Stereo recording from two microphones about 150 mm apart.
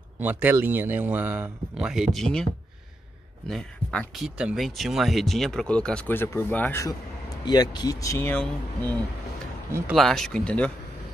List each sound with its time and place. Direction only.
0.2 s speech: 10° right (ahead or behind); by 2.4 s 5° left (ahead or behind)
3.4 s speech: 5° left (ahead or behind)
7.4 s speech: 30° left (ahead or behind); by 10.7 s 5° left (ahead or behind)